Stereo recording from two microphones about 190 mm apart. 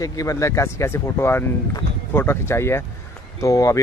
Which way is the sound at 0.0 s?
20° left (ahead or behind).